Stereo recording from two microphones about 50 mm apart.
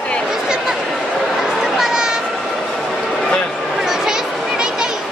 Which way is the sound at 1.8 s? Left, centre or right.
Centre.